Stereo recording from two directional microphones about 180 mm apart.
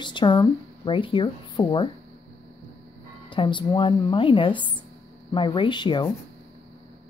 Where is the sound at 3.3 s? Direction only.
25° left (ahead or behind).